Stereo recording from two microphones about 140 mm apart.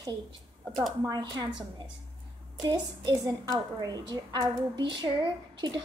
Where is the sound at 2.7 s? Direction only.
30° right (ahead or behind).